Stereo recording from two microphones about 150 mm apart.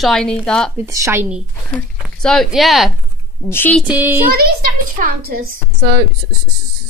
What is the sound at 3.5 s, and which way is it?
Speech, 15° left (ahead or behind).